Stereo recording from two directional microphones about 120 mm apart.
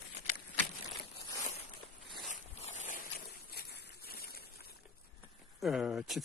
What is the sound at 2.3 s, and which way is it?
Zipper, 90° left.